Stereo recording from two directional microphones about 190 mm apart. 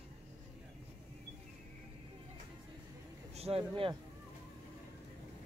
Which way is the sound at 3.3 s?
30° right (ahead or behind).